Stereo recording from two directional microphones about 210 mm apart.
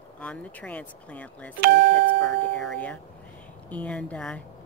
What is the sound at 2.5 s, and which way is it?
A woman's voice, 5° left (ahead or behind).